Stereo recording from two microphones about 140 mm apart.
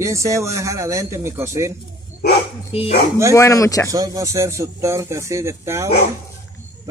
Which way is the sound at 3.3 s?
25° left (ahead or behind).